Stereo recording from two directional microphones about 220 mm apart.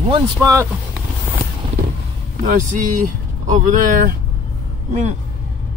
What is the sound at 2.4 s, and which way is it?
Speech, 35° right (ahead or behind).